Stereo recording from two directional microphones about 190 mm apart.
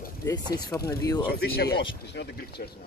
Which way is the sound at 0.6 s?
20° left (ahead or behind).